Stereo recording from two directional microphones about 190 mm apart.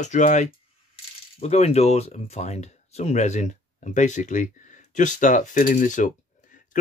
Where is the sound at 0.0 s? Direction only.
40° left (ahead or behind).